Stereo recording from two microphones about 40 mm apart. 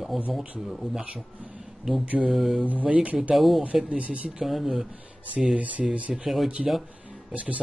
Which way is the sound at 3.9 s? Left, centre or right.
Right.